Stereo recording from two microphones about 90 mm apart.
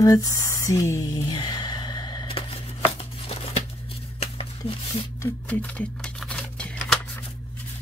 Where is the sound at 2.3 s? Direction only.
90° left.